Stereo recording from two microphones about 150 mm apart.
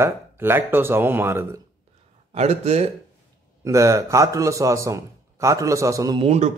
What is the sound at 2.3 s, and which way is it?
Speech, 45° right (ahead or behind).